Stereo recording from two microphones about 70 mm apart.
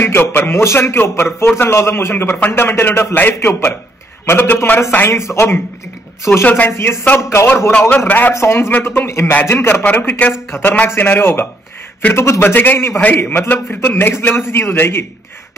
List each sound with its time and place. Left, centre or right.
0.0 s a man's voice: left
3.2 s a man's voice: left
6.4 s a man's voice: left
9.6 s a man's voice: left
9.8 s a man's voice: left